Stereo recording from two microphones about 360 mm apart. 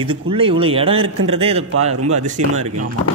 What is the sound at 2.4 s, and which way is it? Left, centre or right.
Speech, right.